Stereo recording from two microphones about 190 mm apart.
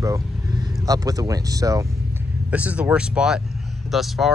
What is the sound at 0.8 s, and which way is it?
Speech, 20° right (ahead or behind).